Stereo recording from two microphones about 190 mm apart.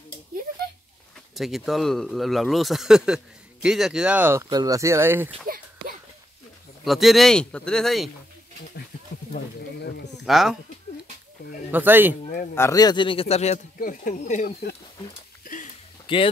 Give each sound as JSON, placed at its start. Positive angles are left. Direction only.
{"t": 1.3, "sound": "speech", "side_deg": 0}
{"t": 6.8, "sound": "speech", "side_deg": 0}
{"t": 9.6, "sound": "a sound", "side_deg": 60}
{"t": 10.1, "sound": "speech", "side_deg": 0}
{"t": 11.7, "sound": "speech", "side_deg": -10}
{"t": 12.5, "sound": "speech", "side_deg": 15}
{"t": 15.4, "sound": "a sound", "side_deg": 45}
{"t": 16.1, "sound": "speech", "side_deg": 25}